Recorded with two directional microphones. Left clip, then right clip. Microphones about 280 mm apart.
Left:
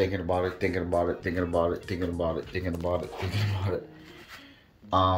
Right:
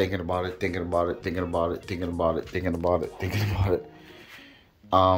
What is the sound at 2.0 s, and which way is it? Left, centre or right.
Speech, centre.